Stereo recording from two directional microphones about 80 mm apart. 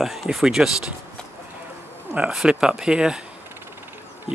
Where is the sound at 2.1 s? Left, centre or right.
Centre.